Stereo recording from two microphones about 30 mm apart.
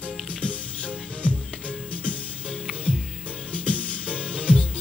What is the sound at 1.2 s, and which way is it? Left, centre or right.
Music, left.